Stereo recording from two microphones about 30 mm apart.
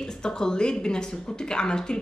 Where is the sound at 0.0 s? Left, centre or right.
Left.